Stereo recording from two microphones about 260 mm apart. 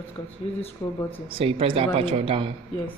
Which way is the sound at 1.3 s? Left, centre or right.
Right.